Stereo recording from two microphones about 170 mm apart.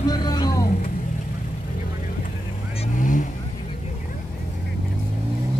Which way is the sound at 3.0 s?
50° left (ahead or behind).